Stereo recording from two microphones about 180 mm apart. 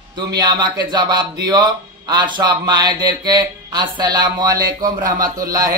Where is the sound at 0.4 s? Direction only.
25° right (ahead or behind).